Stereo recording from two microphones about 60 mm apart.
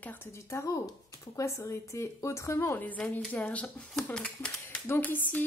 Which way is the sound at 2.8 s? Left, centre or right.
Left.